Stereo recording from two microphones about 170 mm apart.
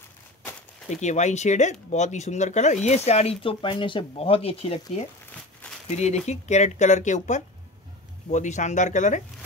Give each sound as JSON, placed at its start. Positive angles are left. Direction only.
{"t": 0.8, "sound": "speech", "side_deg": 45}